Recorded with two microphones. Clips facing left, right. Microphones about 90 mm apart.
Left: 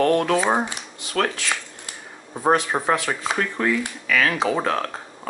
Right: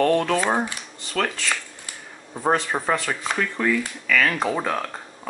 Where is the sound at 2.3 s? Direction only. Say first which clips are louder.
Left 2 dB; 15° left (ahead or behind).